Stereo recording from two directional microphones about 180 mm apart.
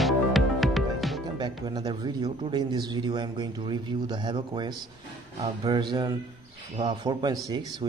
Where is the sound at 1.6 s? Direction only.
20° right (ahead or behind).